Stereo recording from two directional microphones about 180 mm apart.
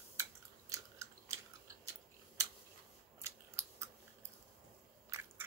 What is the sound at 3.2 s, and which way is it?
Scissors, 15° right (ahead or behind).